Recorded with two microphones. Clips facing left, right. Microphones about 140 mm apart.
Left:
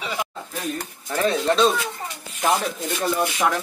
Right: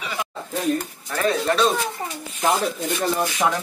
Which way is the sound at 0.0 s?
20° left (ahead or behind).